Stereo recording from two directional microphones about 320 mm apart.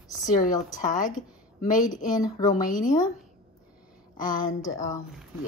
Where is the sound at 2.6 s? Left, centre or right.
Left.